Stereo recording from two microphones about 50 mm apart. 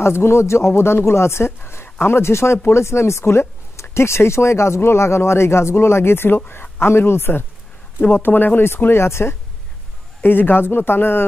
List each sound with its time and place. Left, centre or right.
0.0 s speech: left
10.2 s speech: left